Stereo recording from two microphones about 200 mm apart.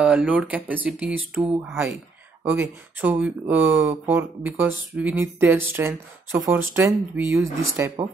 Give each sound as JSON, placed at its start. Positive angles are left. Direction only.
{"t": 0.0, "sound": "speech", "side_deg": -5}